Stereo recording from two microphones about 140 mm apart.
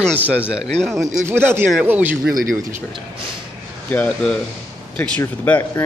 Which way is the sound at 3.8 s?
10° left (ahead or behind).